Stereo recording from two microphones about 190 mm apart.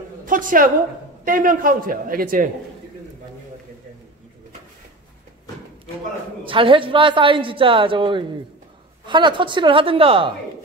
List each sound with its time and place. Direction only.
0.2 s a sound: 45° right (ahead or behind)
1.2 s a man's voice: 45° right (ahead or behind)
6.4 s a woman's voice: 25° right (ahead or behind)